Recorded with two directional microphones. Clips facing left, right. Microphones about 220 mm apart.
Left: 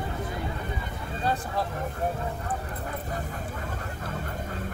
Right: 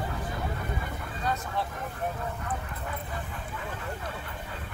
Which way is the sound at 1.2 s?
30° left (ahead or behind).